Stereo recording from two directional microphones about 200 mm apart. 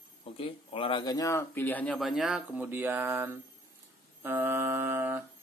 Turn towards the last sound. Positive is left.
turn(degrees=-10)  # may be behind; listen again after turning